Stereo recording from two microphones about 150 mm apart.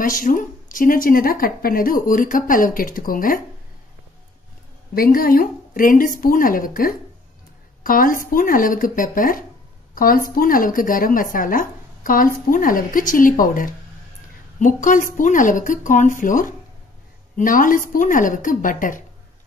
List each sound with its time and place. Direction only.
0.0 s speech: 65° left (ahead or behind)
4.9 s a woman's voice: 75° left (ahead or behind)